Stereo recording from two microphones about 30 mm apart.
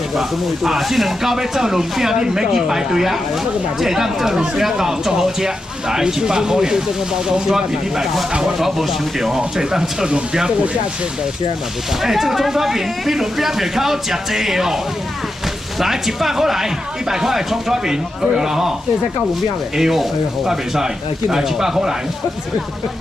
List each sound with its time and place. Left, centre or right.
0.7 s speech: centre
12.0 s speech: centre
15.8 s speech: centre
19.8 s speech: centre